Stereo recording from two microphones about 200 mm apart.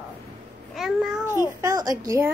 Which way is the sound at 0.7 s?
Centre (ahead or behind).